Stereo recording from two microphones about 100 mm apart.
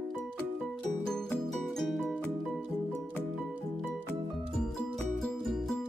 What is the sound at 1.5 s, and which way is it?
Music, centre (ahead or behind).